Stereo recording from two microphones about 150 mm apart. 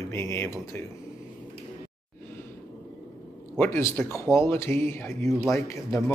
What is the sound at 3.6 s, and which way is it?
Speech, 15° left (ahead or behind).